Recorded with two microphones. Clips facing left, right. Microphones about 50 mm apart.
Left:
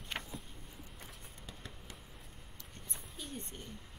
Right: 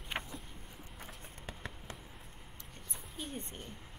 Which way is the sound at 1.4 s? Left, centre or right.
Right.